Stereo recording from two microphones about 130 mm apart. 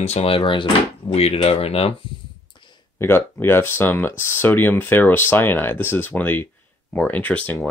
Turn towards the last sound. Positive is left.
turn(degrees=10)  # may be behind; listen again after turning